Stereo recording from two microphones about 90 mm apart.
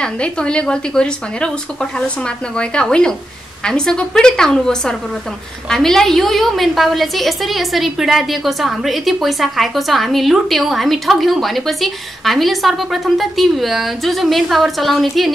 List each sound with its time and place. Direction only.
0.0 s a woman's voice: 10° left (ahead or behind)